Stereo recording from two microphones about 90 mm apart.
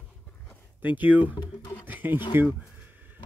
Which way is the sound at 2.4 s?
20° right (ahead or behind).